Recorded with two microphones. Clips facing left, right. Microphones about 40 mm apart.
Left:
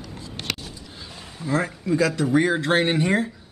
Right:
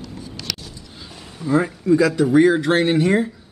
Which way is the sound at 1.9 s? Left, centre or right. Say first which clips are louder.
Right 5 dB; centre.